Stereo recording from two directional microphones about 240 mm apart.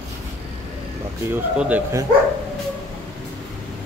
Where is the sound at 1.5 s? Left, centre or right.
Centre.